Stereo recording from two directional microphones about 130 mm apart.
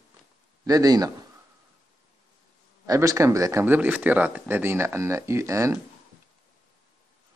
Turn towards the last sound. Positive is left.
turn(degrees=-25)  # may be behind; listen again after turning